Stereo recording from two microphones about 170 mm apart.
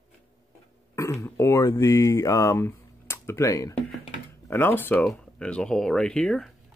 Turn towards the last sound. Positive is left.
turn(degrees=5)  # may be behind; listen again after turning